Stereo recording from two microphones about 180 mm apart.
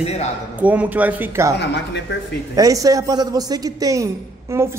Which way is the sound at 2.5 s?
20° right (ahead or behind).